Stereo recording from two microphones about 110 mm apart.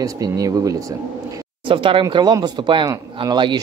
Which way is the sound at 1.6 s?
50° right (ahead or behind).